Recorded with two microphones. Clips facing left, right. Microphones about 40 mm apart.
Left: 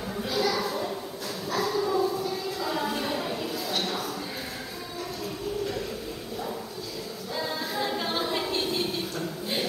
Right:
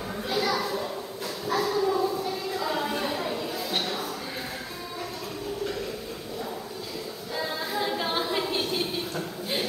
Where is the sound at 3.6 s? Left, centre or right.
Centre.